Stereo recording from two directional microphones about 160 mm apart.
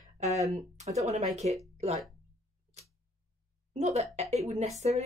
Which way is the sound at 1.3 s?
45° right (ahead or behind).